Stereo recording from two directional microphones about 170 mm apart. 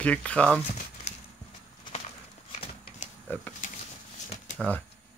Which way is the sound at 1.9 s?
35° left (ahead or behind).